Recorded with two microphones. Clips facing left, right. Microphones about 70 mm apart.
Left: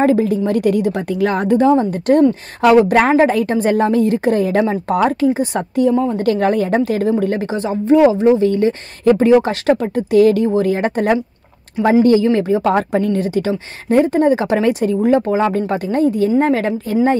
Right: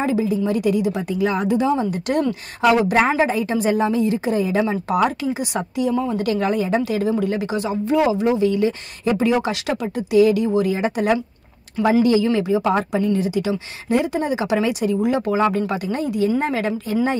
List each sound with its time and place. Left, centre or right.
0.0 s a woman's voice: left